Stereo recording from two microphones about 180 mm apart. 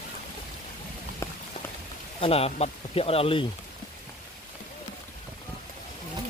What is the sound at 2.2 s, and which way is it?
Speech, 35° left (ahead or behind).